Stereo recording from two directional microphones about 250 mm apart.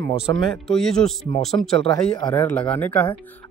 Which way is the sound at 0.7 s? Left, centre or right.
Centre.